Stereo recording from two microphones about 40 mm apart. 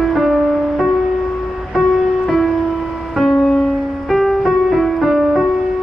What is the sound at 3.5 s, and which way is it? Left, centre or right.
Music, centre.